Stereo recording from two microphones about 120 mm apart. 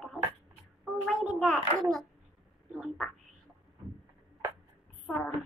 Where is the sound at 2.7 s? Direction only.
Centre (ahead or behind).